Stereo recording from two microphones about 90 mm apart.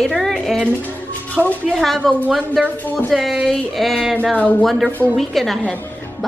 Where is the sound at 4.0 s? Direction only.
15° right (ahead or behind).